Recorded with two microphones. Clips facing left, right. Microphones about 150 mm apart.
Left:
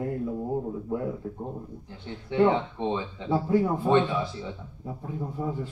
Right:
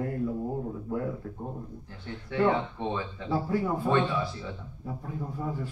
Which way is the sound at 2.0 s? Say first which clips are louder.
Left 3 dB; 20° left (ahead or behind).